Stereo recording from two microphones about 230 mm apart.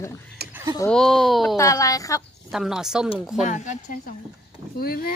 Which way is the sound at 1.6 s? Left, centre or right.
Centre.